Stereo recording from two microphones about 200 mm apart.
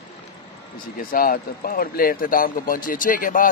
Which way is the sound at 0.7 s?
45° left (ahead or behind).